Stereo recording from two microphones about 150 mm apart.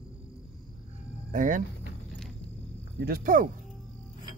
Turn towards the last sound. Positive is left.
turn(degrees=-65)  # may be behind; listen again after turning